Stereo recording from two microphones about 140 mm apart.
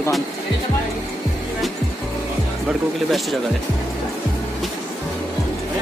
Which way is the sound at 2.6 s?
Centre (ahead or behind).